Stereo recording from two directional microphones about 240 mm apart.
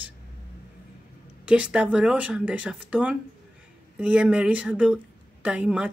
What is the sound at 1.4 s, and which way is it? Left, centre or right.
Speech, centre.